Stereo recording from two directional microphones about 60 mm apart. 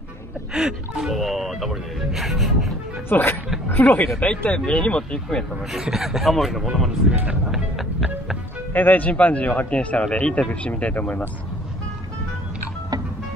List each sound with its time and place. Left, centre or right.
0.5 s speech: centre
3.1 s speech: left
4.6 s speech: centre
5.7 s speech: centre
7.5 s music: centre
8.7 s speech: left